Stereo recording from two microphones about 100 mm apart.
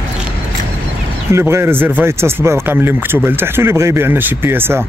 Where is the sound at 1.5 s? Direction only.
20° right (ahead or behind).